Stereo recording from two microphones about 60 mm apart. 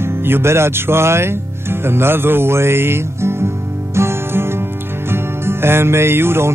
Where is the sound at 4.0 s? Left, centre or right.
Right.